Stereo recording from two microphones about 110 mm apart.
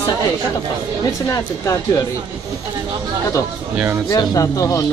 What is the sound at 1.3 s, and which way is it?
Speech, 30° left (ahead or behind).